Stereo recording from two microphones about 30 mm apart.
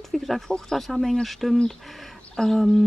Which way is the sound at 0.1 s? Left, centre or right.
Centre.